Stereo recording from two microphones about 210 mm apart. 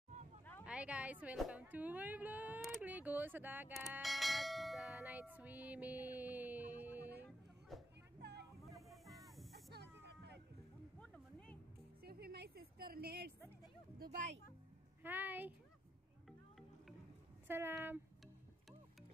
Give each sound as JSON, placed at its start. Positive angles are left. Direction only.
{"t": 0.7, "sound": "a woman's voice", "side_deg": -5}
{"t": 7.2, "sound": "a sound", "side_deg": 0}
{"t": 8.2, "sound": "a sound", "side_deg": -55}
{"t": 9.0, "sound": "a sound", "side_deg": -15}
{"t": 10.0, "sound": "music", "side_deg": -55}
{"t": 11.0, "sound": "music", "side_deg": 5}
{"t": 12.0, "sound": "a woman's voice", "side_deg": -45}
{"t": 13.9, "sound": "speech", "side_deg": -35}
{"t": 15.0, "sound": "speech", "side_deg": -10}
{"t": 16.3, "sound": "cat", "side_deg": 0}
{"t": 17.5, "sound": "speech", "side_deg": -10}